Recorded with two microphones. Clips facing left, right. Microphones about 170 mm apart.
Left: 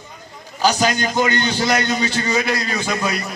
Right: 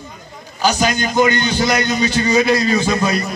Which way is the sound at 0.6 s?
35° left (ahead or behind).